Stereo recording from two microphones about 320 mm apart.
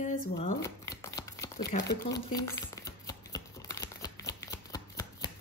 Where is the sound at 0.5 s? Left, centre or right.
Centre.